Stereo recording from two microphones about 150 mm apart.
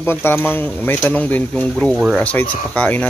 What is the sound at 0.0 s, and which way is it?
Speech, 15° left (ahead or behind).